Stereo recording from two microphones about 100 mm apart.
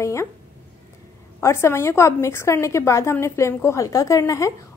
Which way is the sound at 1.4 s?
25° left (ahead or behind).